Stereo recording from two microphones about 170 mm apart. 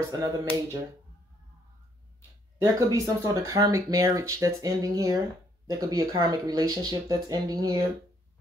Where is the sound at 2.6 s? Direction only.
20° right (ahead or behind).